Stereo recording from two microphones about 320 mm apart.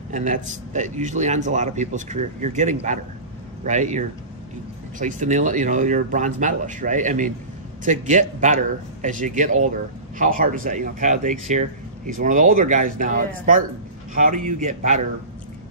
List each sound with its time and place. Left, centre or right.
0.1 s speech: right